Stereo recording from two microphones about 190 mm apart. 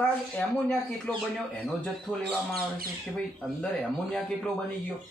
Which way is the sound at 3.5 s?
Centre (ahead or behind).